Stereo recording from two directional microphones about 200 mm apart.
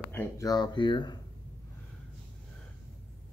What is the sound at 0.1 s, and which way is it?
Speech, 15° left (ahead or behind).